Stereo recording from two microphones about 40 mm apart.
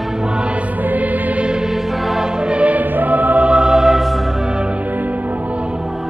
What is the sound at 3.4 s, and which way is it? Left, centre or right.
Music, right.